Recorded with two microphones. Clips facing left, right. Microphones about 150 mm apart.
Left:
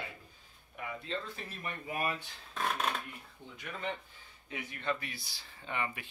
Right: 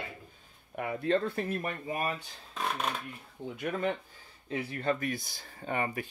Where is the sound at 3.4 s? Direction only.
55° right (ahead or behind).